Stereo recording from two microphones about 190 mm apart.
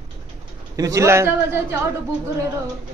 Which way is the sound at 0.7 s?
15° right (ahead or behind).